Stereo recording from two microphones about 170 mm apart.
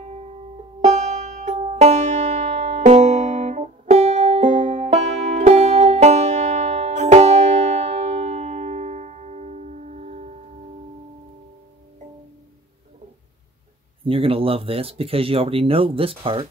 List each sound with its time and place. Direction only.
0.7 s banjo: 45° right (ahead or behind)
2.8 s music: 45° right (ahead or behind)
9.9 s singing bowl: 40° right (ahead or behind)
14.0 s speech: 30° right (ahead or behind)